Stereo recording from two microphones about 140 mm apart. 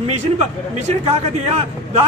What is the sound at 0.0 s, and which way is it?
A man's voice, 55° right (ahead or behind).